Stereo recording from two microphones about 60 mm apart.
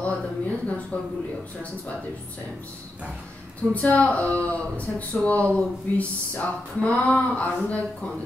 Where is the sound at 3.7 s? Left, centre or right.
Left.